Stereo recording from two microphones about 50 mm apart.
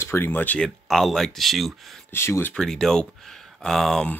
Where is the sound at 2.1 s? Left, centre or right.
Left.